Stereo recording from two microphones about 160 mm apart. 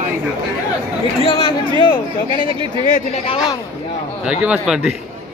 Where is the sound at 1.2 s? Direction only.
35° left (ahead or behind).